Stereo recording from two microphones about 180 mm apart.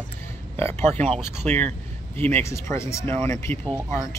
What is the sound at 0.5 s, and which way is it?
Speech, 10° left (ahead or behind).